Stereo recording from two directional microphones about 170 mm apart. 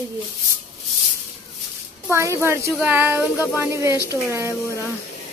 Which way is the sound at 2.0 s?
15° right (ahead or behind).